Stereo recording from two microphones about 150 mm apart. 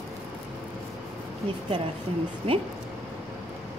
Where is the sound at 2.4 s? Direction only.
40° right (ahead or behind).